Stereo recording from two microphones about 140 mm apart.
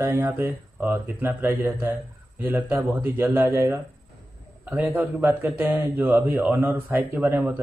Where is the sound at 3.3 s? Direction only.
20° right (ahead or behind).